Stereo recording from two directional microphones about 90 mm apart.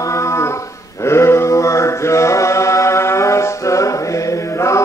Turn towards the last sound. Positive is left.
turn(degrees=35)  # may be behind; listen again after turning